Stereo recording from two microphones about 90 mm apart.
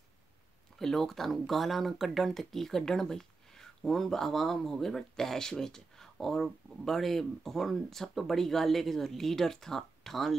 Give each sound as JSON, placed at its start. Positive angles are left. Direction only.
{"t": 0.7, "sound": "speech", "side_deg": 5}